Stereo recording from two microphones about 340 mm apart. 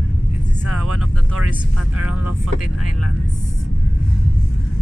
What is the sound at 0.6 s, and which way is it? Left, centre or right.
Vehicle, right.